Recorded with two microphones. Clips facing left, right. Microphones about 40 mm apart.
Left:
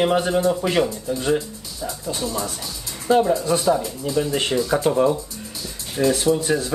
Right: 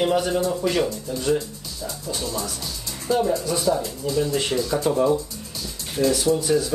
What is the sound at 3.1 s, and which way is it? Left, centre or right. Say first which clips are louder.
Speech: left 4 dB; left.